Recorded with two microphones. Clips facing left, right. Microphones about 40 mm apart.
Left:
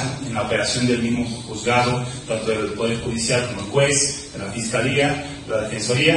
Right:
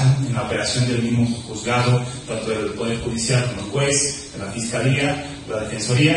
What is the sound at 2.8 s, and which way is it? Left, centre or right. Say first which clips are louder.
Speech: left 1 dB; centre.